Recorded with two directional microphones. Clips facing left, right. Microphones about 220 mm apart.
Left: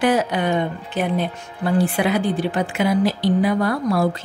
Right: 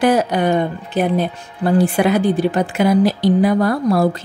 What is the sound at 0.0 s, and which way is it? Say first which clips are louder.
A woman's voice: right 4 dB; 40° right (ahead or behind).